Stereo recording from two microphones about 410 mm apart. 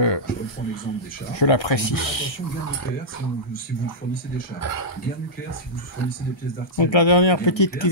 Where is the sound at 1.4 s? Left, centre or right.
Left.